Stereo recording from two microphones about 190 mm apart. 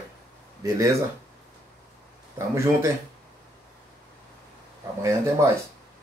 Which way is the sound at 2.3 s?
15° right (ahead or behind).